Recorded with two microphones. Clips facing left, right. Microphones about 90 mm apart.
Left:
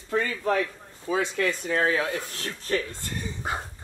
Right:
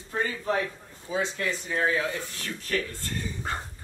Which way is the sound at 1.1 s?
65° left (ahead or behind).